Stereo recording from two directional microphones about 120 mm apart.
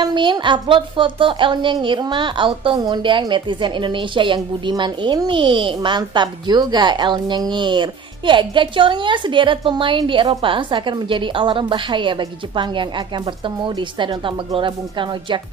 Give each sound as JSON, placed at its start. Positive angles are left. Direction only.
{"t": 0.0, "sound": "a woman's voice", "side_deg": -40}